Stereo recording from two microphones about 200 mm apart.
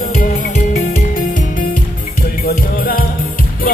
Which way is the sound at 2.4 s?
45° left (ahead or behind).